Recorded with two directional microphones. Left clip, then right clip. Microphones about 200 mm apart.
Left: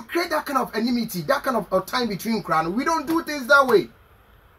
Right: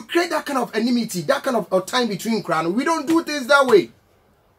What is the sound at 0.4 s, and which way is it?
Speech, 15° right (ahead or behind).